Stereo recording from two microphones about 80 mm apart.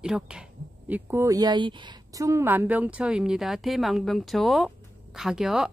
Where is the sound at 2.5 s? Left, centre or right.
Right.